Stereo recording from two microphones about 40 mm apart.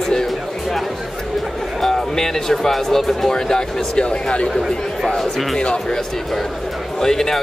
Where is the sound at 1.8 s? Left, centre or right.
Centre.